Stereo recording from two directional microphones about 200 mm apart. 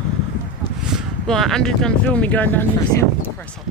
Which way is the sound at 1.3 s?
Centre (ahead or behind).